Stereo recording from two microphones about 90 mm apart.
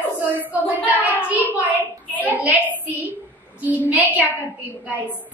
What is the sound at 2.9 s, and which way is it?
Child singing, 20° right (ahead or behind).